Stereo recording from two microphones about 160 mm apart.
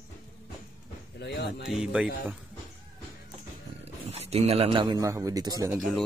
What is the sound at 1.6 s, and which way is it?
Speech, 5° right (ahead or behind).